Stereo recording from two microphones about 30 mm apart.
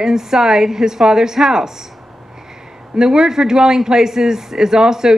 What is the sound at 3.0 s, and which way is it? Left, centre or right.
A man's voice, right.